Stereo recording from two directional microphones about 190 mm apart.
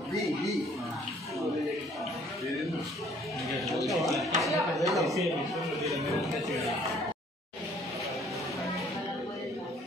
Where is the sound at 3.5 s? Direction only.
Centre (ahead or behind).